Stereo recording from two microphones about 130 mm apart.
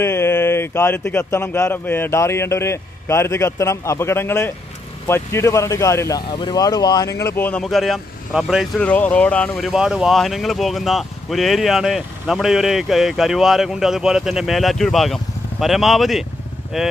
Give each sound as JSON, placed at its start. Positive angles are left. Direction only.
{"t": 0.0, "sound": "speech", "side_deg": 20}
{"t": 6.3, "sound": "speech", "side_deg": 35}
{"t": 7.6, "sound": "speech", "side_deg": 0}
{"t": 8.7, "sound": "speech", "side_deg": 10}